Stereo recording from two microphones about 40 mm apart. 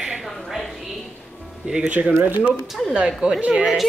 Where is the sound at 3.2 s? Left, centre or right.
Right.